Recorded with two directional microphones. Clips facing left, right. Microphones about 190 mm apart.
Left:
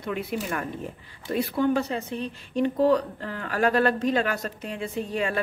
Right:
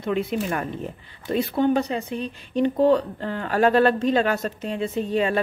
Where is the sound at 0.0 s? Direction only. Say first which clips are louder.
Right 5 dB; 25° right (ahead or behind).